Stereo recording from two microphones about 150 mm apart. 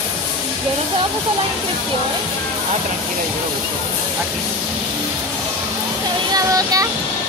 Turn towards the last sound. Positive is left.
turn(degrees=-25)  # may be behind; listen again after turning